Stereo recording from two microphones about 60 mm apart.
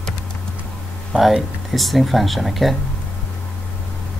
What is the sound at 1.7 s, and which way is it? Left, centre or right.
Speech, centre.